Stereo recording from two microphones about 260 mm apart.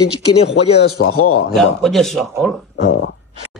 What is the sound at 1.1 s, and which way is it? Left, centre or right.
Speech, left.